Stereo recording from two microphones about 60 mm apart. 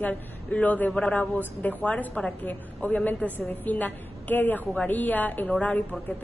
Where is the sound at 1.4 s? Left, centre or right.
Left.